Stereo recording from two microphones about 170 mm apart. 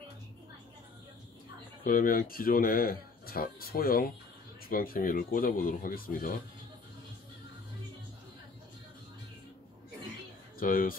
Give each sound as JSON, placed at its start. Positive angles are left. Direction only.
{"t": 1.9, "sound": "speech", "side_deg": 55}
{"t": 10.6, "sound": "speech", "side_deg": 55}